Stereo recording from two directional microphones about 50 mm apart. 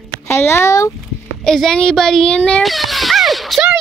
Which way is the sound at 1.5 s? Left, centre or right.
Centre.